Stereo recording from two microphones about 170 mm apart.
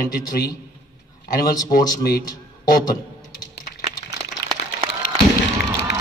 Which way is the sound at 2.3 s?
25° left (ahead or behind).